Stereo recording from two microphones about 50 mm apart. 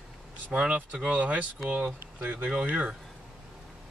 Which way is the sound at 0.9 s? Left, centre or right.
Right.